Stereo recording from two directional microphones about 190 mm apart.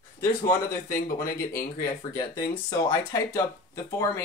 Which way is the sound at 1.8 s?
15° left (ahead or behind).